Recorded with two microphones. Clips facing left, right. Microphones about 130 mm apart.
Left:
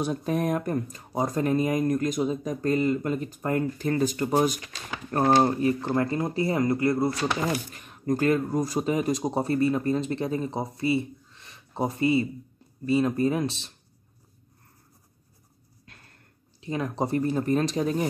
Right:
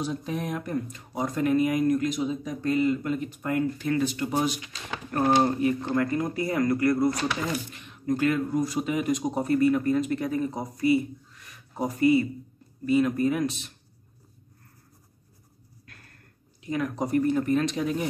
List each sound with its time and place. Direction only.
0.0 s speech: 50° left (ahead or behind)
5.4 s speech: 35° left (ahead or behind)
7.7 s speech: 40° left (ahead or behind)
15.8 s a sound: 25° left (ahead or behind)
16.6 s speech: 30° left (ahead or behind)